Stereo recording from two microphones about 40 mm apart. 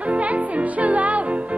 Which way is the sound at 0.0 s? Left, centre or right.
Right.